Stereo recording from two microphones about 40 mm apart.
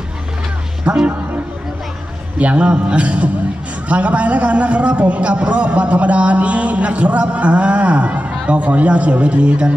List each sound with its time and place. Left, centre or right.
0.9 s a man's voice: right
2.3 s a man's voice: right